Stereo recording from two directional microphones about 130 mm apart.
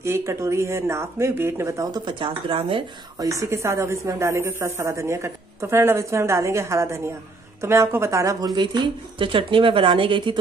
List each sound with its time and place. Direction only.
0.0 s speech: 20° right (ahead or behind); by 2.8 s 40° right (ahead or behind)
3.2 s speech: 25° right (ahead or behind); by 10.4 s 40° right (ahead or behind)